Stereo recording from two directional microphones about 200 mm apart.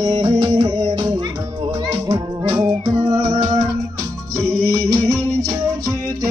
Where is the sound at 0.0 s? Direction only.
20° right (ahead or behind).